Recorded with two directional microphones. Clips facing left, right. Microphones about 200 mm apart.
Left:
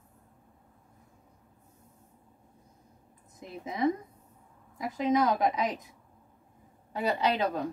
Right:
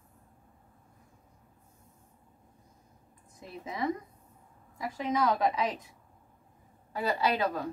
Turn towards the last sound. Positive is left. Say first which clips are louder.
# left 1 dB
turn(degrees=20)  # may be behind; listen again after turning